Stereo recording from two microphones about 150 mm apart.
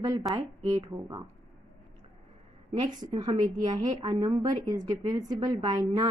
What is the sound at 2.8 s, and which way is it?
A woman's voice, 30° right (ahead or behind).